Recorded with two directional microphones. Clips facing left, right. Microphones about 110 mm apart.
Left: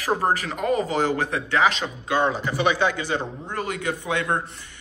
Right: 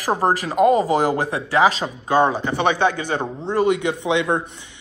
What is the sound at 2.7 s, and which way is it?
Speech, 50° right (ahead or behind).